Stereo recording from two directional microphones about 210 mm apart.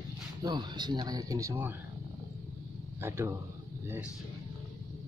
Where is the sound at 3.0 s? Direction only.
10° right (ahead or behind).